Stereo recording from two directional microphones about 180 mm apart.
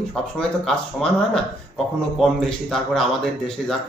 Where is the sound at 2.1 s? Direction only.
Centre (ahead or behind).